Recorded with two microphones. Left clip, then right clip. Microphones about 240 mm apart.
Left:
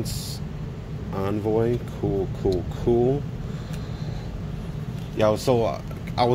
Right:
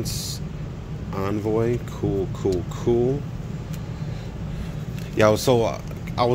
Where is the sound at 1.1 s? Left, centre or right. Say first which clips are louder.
Even; centre.